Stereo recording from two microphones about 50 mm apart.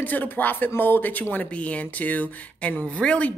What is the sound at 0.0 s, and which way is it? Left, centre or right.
Speech, left.